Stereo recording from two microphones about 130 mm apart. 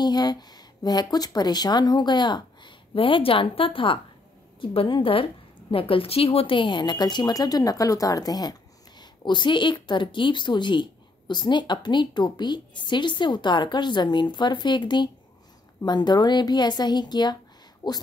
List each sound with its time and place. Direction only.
0.0 s a woman's voice: 30° left (ahead or behind)